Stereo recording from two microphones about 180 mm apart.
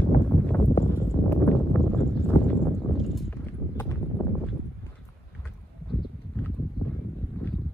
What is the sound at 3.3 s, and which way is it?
Clip-clop, 10° left (ahead or behind).